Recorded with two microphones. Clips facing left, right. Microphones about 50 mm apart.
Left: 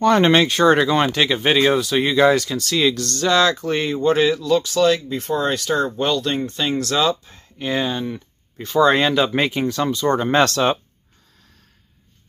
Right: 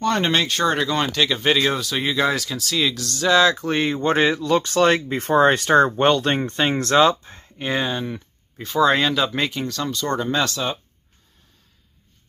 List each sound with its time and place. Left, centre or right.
0.0 s speech: centre
3.6 s speech: right
4.0 s speech: right
6.9 s speech: right; by 9.3 s centre
9.3 s speech: left
10.1 s speech: left
10.4 s speech: left